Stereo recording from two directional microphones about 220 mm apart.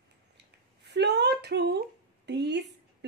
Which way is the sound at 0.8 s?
50° right (ahead or behind).